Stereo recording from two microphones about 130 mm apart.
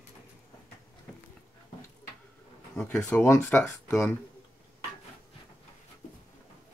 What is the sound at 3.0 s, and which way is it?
Speech, 20° left (ahead or behind).